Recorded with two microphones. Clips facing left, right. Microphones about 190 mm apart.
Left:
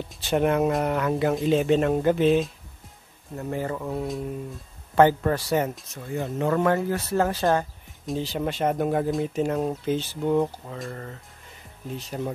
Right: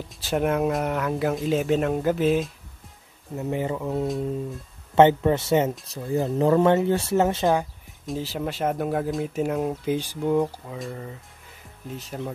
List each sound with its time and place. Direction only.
0.2 s speech: centre (ahead or behind)
3.3 s speech: 20° right (ahead or behind)
5.9 s speech: 35° right (ahead or behind)
8.0 s speech: 5° right (ahead or behind)